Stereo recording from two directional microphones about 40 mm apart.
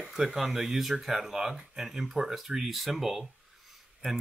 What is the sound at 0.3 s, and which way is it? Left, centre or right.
Speech, centre.